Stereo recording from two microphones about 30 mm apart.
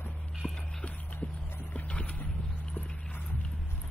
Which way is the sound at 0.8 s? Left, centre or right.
Left.